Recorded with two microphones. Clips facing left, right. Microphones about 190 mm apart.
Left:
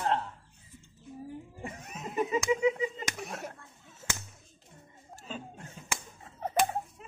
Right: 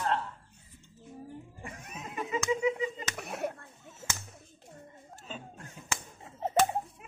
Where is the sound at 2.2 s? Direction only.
15° left (ahead or behind).